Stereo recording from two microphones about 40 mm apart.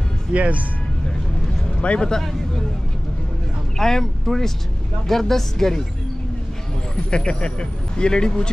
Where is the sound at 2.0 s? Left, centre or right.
Centre.